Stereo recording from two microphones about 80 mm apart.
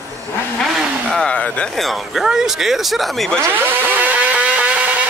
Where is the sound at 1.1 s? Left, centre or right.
Centre.